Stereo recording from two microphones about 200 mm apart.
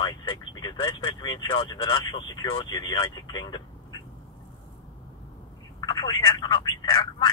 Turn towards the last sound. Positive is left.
turn(degrees=20)  # may be behind; listen again after turning